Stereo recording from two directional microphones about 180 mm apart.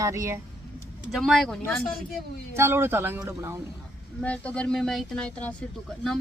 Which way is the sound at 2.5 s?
15° right (ahead or behind).